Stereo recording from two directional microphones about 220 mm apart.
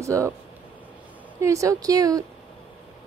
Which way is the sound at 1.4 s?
15° right (ahead or behind).